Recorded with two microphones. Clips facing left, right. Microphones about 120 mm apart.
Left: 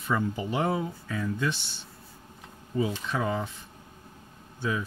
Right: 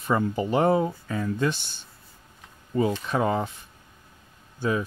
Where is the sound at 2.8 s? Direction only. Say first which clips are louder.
Right 5 dB; 50° right (ahead or behind).